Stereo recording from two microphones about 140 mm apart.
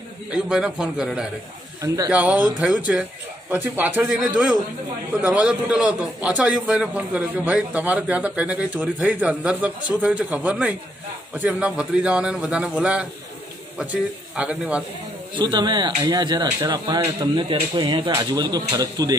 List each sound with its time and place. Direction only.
0.3 s a man's voice: 5° right (ahead or behind)
14.3 s a man's voice: 10° right (ahead or behind)
15.3 s speech: 30° right (ahead or behind)